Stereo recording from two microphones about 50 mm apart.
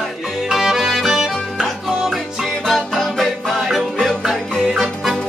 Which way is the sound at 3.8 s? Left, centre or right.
Centre.